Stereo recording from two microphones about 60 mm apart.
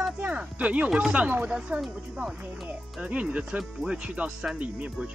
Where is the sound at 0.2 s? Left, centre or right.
Right.